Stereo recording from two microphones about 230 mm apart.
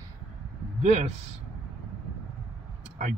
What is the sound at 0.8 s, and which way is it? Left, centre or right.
Speech, right.